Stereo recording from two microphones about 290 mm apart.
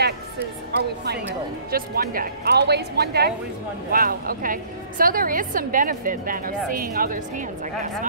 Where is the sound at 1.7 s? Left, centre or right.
Right.